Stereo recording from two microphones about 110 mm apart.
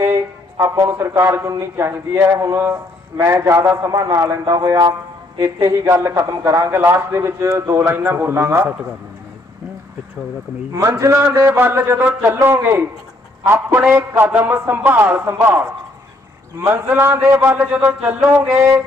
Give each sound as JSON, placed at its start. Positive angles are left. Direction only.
{"t": 0.0, "sound": "a sound", "side_deg": -25}
{"t": 0.8, "sound": "a man's voice", "side_deg": -25}
{"t": 10.7, "sound": "a man's voice", "side_deg": -30}